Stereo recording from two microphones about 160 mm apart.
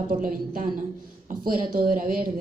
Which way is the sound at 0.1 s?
60° right (ahead or behind).